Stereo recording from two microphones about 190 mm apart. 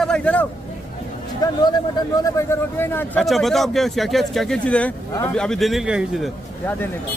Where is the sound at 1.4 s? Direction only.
20° left (ahead or behind).